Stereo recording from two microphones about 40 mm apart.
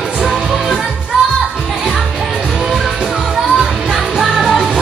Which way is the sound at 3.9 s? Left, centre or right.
Centre.